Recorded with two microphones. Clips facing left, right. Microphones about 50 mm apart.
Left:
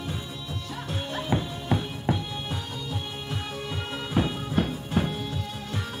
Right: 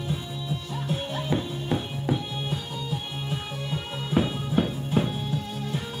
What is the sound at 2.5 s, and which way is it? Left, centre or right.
Music, centre.